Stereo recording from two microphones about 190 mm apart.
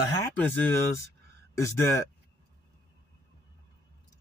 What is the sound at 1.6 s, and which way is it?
Speech, 15° left (ahead or behind).